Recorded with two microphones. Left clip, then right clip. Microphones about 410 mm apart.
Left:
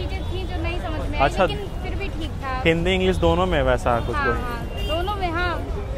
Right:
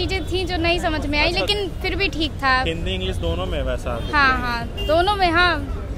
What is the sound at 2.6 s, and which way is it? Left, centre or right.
Speech, left.